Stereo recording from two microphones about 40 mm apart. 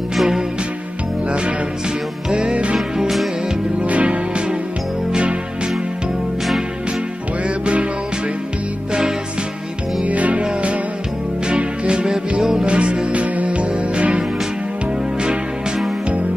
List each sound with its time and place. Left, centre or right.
0.1 s music: centre
2.2 s music: right
3.0 s music: centre
3.8 s music: right
7.4 s music: right
10.0 s music: right
11.4 s music: right
12.6 s music: right